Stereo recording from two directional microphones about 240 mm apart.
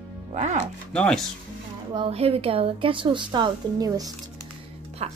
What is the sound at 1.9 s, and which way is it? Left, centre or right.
A woman's voice, right.